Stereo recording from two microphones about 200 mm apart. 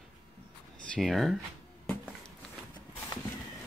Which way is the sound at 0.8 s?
Centre (ahead or behind).